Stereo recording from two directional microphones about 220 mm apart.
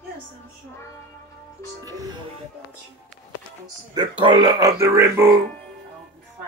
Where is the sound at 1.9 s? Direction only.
15° right (ahead or behind).